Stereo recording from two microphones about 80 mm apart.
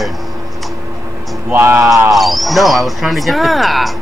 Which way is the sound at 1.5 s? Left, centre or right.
Right.